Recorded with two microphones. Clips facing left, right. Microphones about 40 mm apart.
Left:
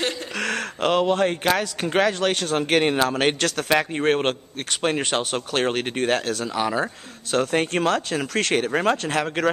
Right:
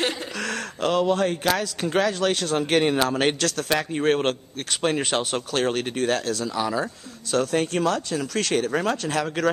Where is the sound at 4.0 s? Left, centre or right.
Centre.